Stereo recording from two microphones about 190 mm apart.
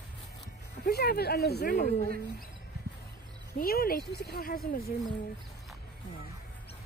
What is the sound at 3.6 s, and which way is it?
Speech, 50° left (ahead or behind).